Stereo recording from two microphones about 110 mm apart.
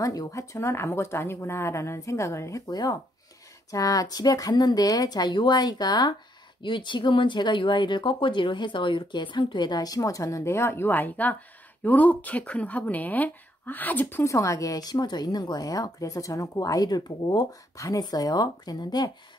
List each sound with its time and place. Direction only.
0.0 s speech: 30° left (ahead or behind)
14.2 s speech: 30° left (ahead or behind)